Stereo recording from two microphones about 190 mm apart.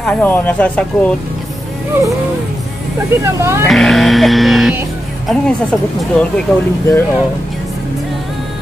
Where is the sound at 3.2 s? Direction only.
15° right (ahead or behind).